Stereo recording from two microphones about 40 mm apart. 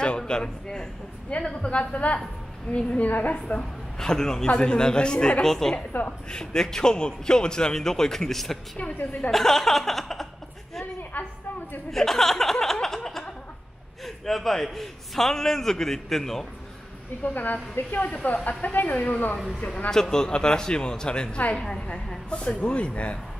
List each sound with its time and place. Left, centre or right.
0.3 s a man's voice: centre; by 3.3 s left
4.0 s a man's voice: centre
11.1 s a sound: left
11.9 s a man's voice: centre
12.8 s snicker: centre
14.0 s a man's voice: centre
17.2 s a woman's voice: left
19.9 s a woman's voice: centre; by 23.1 s left